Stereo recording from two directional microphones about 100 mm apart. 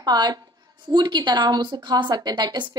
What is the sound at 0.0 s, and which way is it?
A woman's voice, 45° right (ahead or behind).